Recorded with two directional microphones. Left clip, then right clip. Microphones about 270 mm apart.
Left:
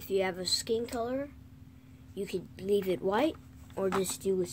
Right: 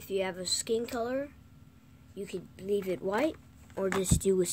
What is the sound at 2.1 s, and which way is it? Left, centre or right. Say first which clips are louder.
Speech: left 3 dB; centre.